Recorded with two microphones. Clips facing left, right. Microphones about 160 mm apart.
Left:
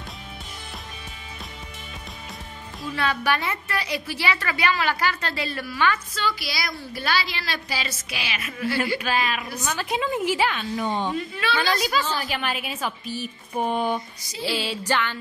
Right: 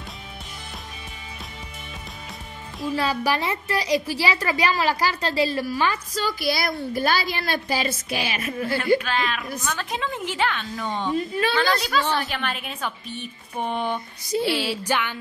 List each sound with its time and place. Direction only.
3.0 s a woman's voice: 35° right (ahead or behind)
9.0 s a woman's voice: 5° left (ahead or behind)
11.1 s a woman's voice: 40° right (ahead or behind)
11.6 s a woman's voice: 65° right (ahead or behind)
12.4 s a woman's voice: 5° left (ahead or behind)
14.8 s music: 15° right (ahead or behind)